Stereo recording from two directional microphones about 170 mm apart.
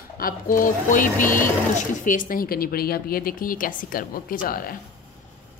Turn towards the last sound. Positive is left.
turn(degrees=55)  # may be behind; listen again after turning